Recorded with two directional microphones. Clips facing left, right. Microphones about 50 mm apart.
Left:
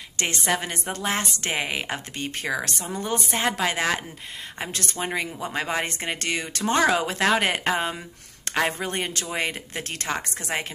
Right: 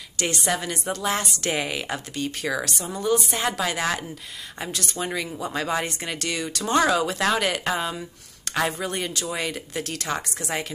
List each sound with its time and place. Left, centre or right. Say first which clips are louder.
0.2 s a woman's voice: even; left